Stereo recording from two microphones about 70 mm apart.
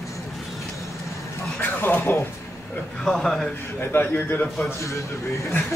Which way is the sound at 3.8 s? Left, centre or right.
Left.